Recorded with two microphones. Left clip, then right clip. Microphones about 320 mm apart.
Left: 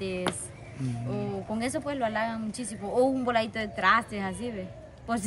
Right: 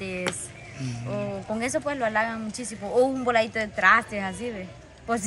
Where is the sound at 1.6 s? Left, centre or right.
Centre.